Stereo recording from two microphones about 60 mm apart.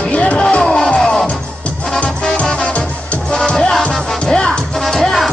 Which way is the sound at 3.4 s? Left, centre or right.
Centre.